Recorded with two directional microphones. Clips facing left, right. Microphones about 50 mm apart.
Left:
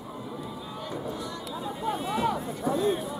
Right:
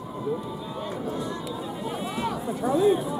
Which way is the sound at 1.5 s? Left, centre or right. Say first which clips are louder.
Even; centre.